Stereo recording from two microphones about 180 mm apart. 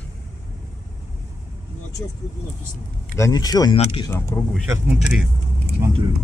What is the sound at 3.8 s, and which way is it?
Speech, 30° left (ahead or behind).